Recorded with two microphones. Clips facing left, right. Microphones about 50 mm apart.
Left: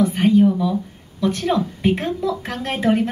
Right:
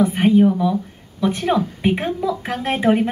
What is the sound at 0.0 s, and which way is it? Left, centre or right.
Speech, centre.